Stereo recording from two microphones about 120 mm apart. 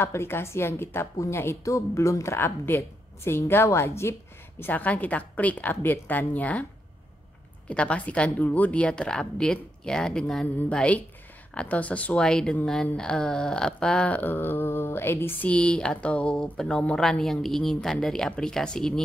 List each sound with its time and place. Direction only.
0.0 s a woman's voice: 20° left (ahead or behind)
7.6 s speech: 10° left (ahead or behind)